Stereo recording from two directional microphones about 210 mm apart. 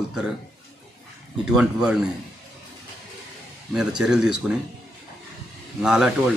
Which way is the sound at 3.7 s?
5° right (ahead or behind).